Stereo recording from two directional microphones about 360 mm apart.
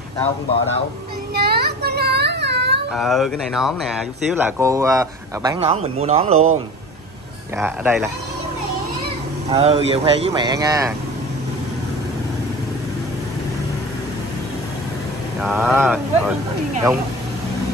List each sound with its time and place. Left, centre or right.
1.3 s child singing: right
2.9 s speech: centre
7.5 s speech: centre
9.5 s speech: centre
15.4 s speech: centre